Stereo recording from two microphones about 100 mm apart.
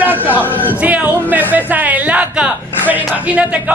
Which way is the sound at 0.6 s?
15° right (ahead or behind).